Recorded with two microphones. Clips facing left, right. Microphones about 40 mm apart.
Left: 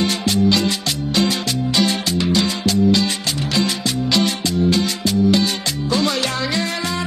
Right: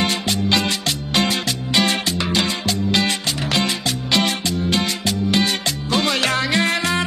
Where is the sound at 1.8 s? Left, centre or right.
Right.